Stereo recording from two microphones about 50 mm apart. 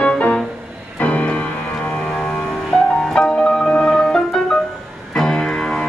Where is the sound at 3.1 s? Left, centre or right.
Centre.